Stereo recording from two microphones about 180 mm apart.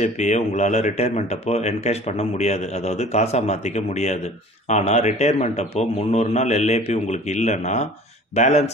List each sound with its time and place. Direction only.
0.0 s a man's voice: 40° left (ahead or behind)